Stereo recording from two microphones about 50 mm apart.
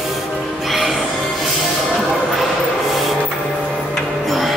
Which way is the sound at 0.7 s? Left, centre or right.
Centre.